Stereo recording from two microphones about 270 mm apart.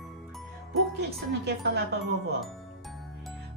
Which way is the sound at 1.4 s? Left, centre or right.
Right.